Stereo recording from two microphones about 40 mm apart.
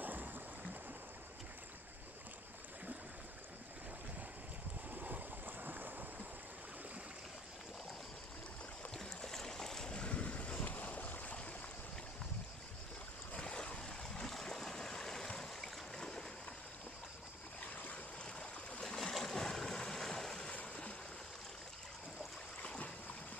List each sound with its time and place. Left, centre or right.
0.0 s boat: right
4.9 s a sound: right
8.9 s boat: centre
9.9 s boat: left
13.4 s a sound: left
14.2 s stream: centre
17.9 s boat: left
18.9 s boat: centre